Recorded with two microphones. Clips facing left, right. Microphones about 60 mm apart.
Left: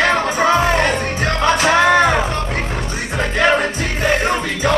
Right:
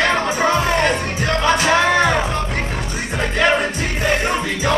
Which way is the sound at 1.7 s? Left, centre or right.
Centre.